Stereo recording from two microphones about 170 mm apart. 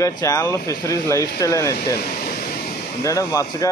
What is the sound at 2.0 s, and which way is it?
Air conditioning, 65° left (ahead or behind).